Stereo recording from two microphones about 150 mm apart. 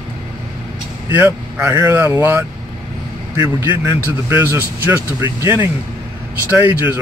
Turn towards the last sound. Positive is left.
turn(degrees=-10)  # may be behind; listen again after turning